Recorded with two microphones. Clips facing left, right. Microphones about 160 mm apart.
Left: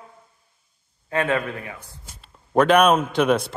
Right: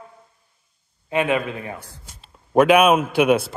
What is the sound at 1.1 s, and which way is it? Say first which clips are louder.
A man's voice: right 2 dB; 15° right (ahead or behind).